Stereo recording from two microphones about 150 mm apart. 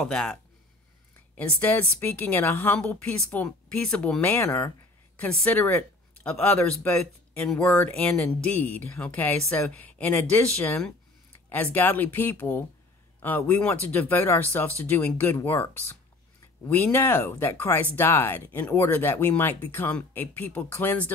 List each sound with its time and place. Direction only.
0.0 s speech: 5° left (ahead or behind)
11.4 s speech: 10° left (ahead or behind)